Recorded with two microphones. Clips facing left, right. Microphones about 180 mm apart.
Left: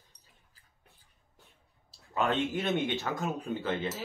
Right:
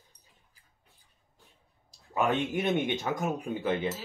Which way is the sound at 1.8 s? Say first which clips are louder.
Right 2 dB; 15° right (ahead or behind).